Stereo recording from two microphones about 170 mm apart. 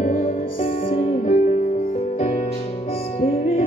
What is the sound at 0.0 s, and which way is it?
Music, 45° left (ahead or behind).